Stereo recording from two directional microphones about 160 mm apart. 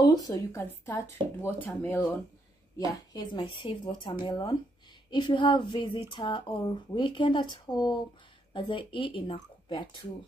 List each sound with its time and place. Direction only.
0.0 s speech: 25° left (ahead or behind)
2.8 s a woman's voice: 25° left (ahead or behind)